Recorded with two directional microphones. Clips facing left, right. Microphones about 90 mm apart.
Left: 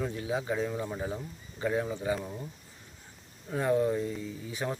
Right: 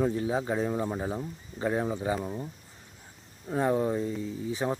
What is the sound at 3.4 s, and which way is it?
Speech, 25° right (ahead or behind).